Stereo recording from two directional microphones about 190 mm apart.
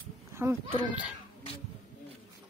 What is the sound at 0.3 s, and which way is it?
Speech, 15° right (ahead or behind).